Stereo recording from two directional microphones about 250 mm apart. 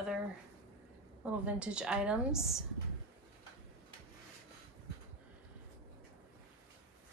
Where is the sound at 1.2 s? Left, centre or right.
Centre.